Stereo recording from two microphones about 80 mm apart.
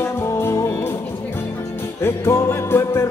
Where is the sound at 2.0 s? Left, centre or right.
Left.